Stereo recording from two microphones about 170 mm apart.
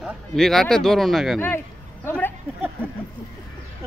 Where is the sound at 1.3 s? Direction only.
10° left (ahead or behind).